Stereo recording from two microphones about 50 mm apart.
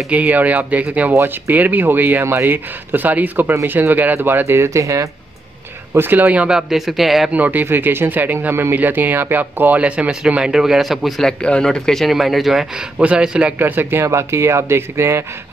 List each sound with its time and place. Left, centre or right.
0.1 s speech: right
4.6 s speech: right
5.9 s speech: right
6.5 s speech: centre
7.2 s speech: right
7.6 s speech: right
10.4 s speech: centre
11.4 s speech: centre
12.7 s speech: right
13.6 s speech: right